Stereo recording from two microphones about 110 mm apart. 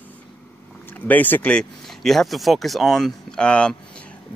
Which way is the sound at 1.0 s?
15° left (ahead or behind).